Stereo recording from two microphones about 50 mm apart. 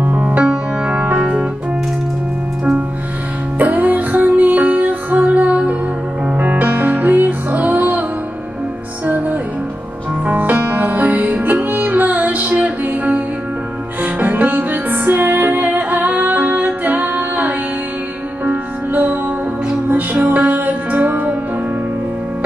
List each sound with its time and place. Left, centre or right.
0.0 s music: right
3.5 s music: right
9.0 s music: right